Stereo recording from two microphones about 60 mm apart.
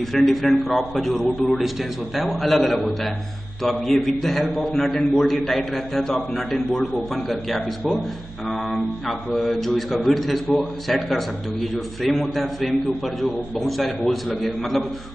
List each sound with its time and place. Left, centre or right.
0.1 s a man's voice: centre